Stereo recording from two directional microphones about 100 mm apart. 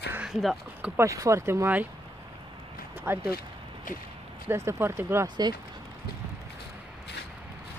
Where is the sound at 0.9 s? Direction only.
30° right (ahead or behind).